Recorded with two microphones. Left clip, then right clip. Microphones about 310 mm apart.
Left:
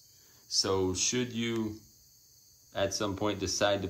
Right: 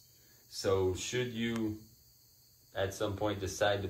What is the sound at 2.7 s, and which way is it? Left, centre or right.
Speech, centre.